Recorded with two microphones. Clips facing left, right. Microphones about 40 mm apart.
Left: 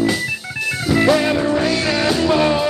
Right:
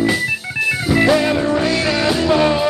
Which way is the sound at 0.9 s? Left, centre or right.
Centre.